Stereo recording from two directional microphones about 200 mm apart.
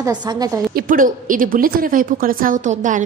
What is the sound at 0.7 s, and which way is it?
A woman's voice, 45° right (ahead or behind).